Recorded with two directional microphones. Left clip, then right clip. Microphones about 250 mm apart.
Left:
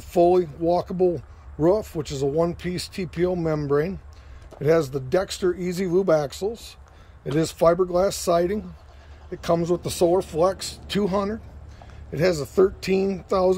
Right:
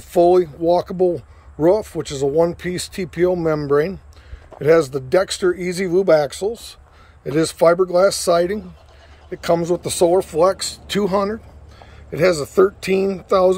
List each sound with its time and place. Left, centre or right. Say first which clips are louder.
0.1 s speech: right 5 dB; centre